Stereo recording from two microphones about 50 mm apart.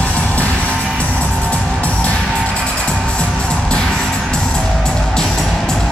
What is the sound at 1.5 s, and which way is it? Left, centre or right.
Music, left.